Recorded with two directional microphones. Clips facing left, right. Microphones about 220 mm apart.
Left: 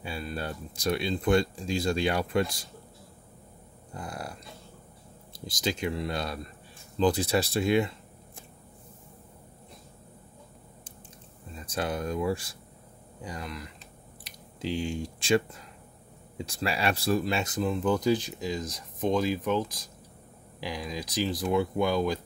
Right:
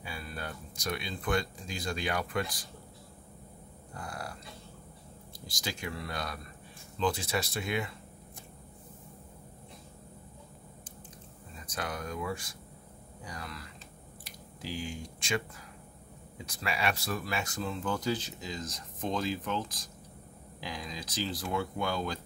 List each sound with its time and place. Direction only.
0.0 s speech: 25° left (ahead or behind)
3.9 s speech: 20° left (ahead or behind)
5.5 s speech: 20° left (ahead or behind)
11.6 s speech: 30° left (ahead or behind)
13.2 s speech: 20° left (ahead or behind)
14.2 s a sound: 25° left (ahead or behind)
16.4 s speech: 30° left (ahead or behind); by 22.2 s 15° left (ahead or behind)